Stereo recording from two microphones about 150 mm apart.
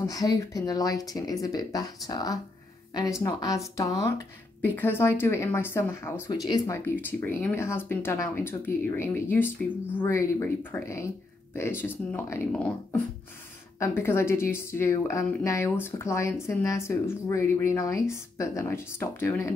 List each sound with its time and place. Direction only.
0.0 s speech: 25° left (ahead or behind)
6.2 s speech: 25° left (ahead or behind)